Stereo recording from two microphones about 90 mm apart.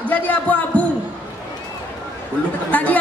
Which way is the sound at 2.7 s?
15° left (ahead or behind).